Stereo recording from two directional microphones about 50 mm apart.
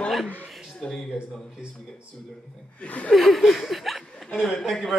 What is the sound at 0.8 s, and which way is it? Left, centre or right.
Speech, centre.